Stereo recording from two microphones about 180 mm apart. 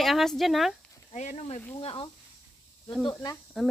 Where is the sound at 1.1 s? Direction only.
40° left (ahead or behind).